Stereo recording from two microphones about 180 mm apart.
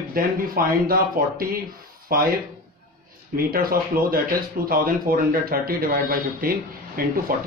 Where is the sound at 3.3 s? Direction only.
55° right (ahead or behind).